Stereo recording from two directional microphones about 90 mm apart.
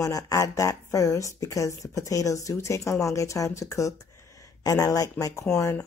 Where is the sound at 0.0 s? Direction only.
35° left (ahead or behind).